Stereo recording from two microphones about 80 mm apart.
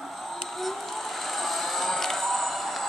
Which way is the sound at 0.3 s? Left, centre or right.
Centre.